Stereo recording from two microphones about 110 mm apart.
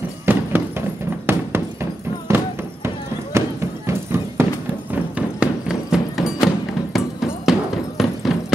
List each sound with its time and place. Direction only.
0.3 s horse: 20° right (ahead or behind)
3.3 s a sound: 25° right (ahead or behind)
4.9 s music: 10° right (ahead or behind)